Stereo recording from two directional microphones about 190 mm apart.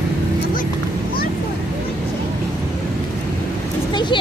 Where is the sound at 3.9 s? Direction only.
25° left (ahead or behind).